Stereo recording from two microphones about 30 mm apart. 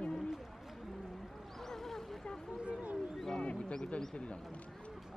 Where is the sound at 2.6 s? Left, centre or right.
Right.